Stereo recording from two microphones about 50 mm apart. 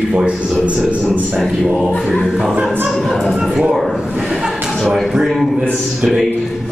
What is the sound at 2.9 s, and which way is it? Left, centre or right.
A man's voice, centre.